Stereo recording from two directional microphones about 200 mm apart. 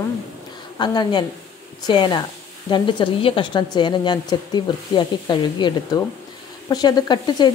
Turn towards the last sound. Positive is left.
turn(degrees=20)  # may be behind; listen again after turning